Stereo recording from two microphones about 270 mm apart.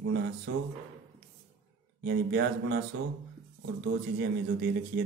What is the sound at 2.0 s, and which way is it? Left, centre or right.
Speech, right.